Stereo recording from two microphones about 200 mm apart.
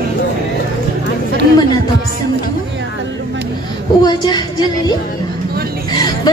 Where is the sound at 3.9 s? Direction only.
20° left (ahead or behind).